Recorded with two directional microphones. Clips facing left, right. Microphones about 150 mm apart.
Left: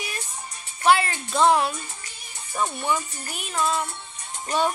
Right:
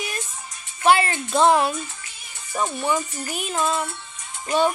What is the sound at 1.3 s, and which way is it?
Speech, 5° right (ahead or behind).